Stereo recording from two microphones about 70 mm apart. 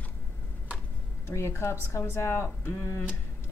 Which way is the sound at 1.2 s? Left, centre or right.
Left.